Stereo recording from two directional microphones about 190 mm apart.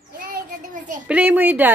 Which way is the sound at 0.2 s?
45° right (ahead or behind).